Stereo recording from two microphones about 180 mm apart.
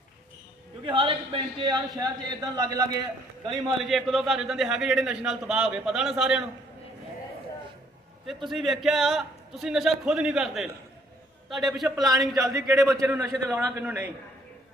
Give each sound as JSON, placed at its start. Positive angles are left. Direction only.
{"t": 0.8, "sound": "a man's voice", "side_deg": -30}
{"t": 3.8, "sound": "a man's voice", "side_deg": 0}
{"t": 8.3, "sound": "a man's voice", "side_deg": 0}
{"t": 12.5, "sound": "a man's voice", "side_deg": -20}